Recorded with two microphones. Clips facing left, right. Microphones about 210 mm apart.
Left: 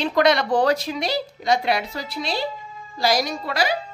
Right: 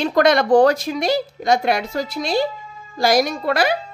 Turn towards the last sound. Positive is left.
turn(degrees=-55)  # may be behind; listen again after turning